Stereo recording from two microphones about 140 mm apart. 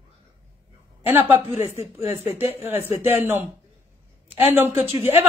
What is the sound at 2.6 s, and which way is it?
Speech, 15° right (ahead or behind).